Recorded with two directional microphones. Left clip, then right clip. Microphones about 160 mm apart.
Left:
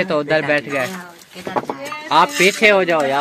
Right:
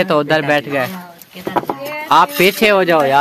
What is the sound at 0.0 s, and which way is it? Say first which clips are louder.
Speech: right 3 dB; 25° right (ahead or behind).